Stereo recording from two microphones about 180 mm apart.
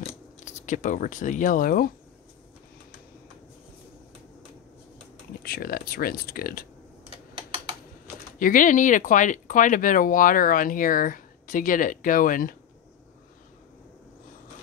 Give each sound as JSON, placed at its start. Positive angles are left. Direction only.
{"t": 0.5, "sound": "speech", "side_deg": 45}
{"t": 5.4, "sound": "speech", "side_deg": 55}
{"t": 8.4, "sound": "speech", "side_deg": 50}